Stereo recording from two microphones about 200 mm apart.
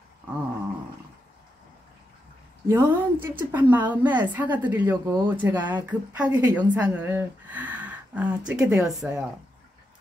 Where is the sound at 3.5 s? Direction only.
10° right (ahead or behind).